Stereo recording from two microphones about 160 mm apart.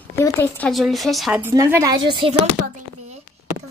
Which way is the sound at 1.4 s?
15° right (ahead or behind).